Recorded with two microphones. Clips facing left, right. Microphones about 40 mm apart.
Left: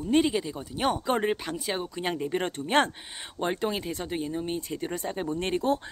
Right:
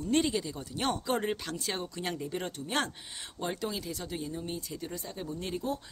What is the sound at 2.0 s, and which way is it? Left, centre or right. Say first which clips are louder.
Speech: left 9 dB; left.